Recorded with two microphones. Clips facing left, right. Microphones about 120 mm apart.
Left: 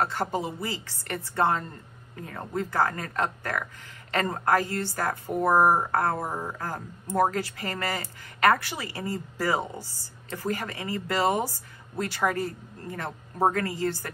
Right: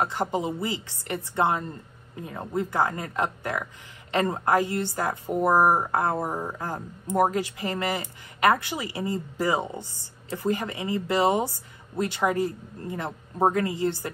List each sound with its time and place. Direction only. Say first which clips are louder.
0.0 s speech: right 1 dB; 15° right (ahead or behind)